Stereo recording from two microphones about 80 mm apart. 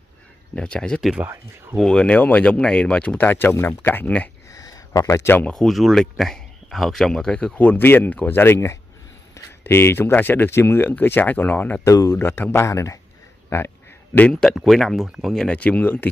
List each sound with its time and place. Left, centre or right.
0.6 s speech: centre
4.5 s a sound: left
5.1 s speech: left
5.5 s speech: centre
11.8 s speech: left
12.2 s speech: left
14.3 s speech: centre
15.4 s speech: centre